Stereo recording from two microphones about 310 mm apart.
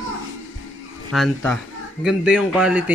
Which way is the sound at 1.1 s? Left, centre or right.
Centre.